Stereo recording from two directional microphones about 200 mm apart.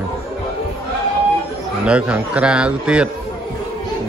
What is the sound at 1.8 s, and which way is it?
Speech, 5° right (ahead or behind).